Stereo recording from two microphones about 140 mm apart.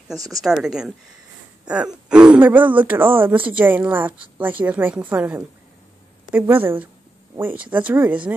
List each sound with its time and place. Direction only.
0.1 s a woman's voice: 25° right (ahead or behind)
0.4 s a woman's voice: 5° right (ahead or behind)